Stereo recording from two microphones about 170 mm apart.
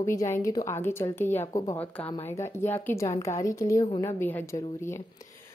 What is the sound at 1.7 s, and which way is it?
Speech, 10° left (ahead or behind).